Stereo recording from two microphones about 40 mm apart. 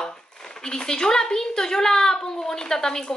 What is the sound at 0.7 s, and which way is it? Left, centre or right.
A woman's voice, centre.